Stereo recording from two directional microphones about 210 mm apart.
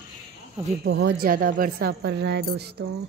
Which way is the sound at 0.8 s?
55° right (ahead or behind).